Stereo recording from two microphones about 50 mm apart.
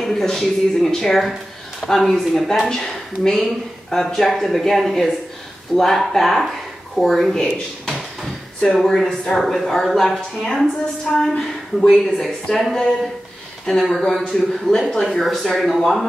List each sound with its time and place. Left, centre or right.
0.0 s a woman's voice: centre
8.7 s speech: centre
9.1 s speech: centre
9.4 s a woman's voice: centre
15.0 s speech: centre
15.3 s a woman's voice: centre
15.6 s speech: centre